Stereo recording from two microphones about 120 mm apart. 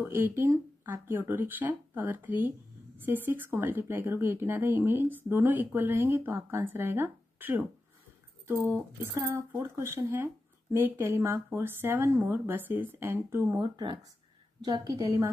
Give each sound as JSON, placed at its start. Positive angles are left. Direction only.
{"t": 0.0, "sound": "a woman's voice", "side_deg": -20}
{"t": 9.0, "sound": "a woman's voice", "side_deg": -20}
{"t": 13.6, "sound": "a woman's voice", "side_deg": -40}
{"t": 15.0, "sound": "a woman's voice", "side_deg": -25}